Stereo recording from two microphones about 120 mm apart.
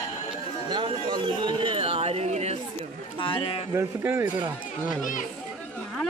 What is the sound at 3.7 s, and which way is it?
Speech, 20° right (ahead or behind).